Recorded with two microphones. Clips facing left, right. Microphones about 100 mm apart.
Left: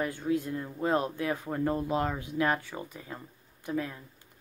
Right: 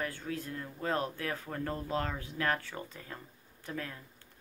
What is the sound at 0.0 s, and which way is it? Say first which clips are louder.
Speech: left 8 dB; 20° left (ahead or behind).